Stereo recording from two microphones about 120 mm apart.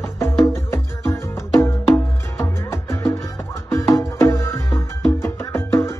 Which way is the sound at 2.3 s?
20° left (ahead or behind).